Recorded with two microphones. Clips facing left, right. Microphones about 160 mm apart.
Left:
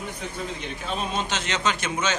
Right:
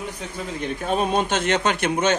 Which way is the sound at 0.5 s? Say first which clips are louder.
Right 7 dB; 50° right (ahead or behind).